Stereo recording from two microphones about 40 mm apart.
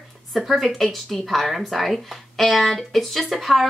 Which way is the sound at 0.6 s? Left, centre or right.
Centre.